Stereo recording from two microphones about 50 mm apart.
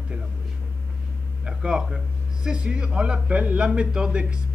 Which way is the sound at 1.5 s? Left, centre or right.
Centre.